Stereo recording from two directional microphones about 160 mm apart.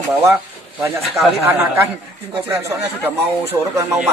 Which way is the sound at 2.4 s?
15° right (ahead or behind).